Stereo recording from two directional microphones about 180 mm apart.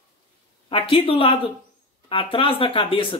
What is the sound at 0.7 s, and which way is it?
Speech, 30° left (ahead or behind).